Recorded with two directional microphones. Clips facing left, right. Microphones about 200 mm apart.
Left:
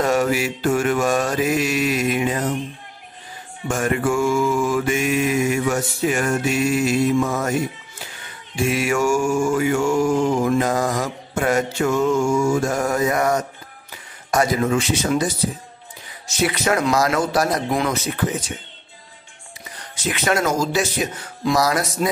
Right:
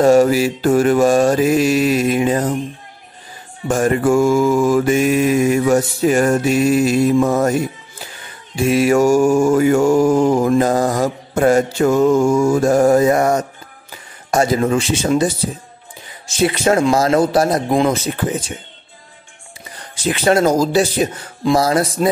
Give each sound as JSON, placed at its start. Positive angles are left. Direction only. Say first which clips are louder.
{"t": 0.0, "sound": "mantra", "louder": "right 8 dB", "side_deg": -35}
{"t": 3.6, "sound": "mantra", "louder": "right 6 dB", "side_deg": -35}
{"t": 8.6, "sound": "mantra", "louder": "right 7 dB", "side_deg": -35}
{"t": 14.3, "sound": "speech", "louder": "right 4 dB", "side_deg": -30}
{"t": 20.1, "sound": "mantra", "louder": "right 6 dB", "side_deg": -30}